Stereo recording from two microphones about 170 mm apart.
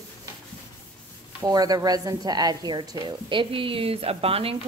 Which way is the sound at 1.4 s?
20° right (ahead or behind).